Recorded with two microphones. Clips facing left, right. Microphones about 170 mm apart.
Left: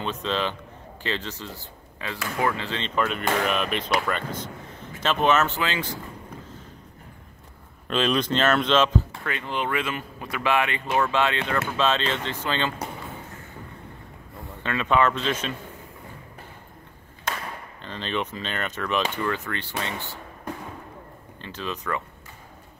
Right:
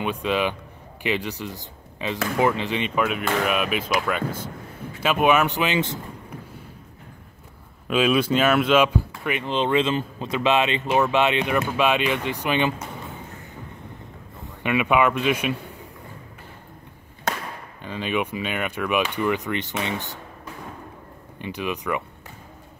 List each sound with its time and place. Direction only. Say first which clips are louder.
0.0 s speech: right 4 dB; 10° right (ahead or behind)
7.9 s speech: right 4 dB; 10° right (ahead or behind)
14.6 s speech: right 2 dB; 15° right (ahead or behind)
17.8 s speech: right 4 dB; 10° right (ahead or behind)
21.4 s speech: right 5 dB; 15° right (ahead or behind)